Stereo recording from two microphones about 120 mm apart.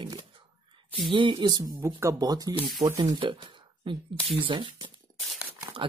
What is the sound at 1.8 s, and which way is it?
Speech, 25° right (ahead or behind).